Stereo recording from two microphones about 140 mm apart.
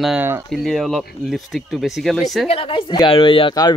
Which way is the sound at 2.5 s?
40° left (ahead or behind).